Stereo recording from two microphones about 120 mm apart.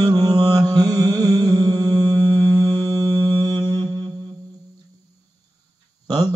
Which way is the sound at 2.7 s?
35° right (ahead or behind).